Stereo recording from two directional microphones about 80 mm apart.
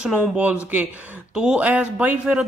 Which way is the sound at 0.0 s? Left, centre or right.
Centre.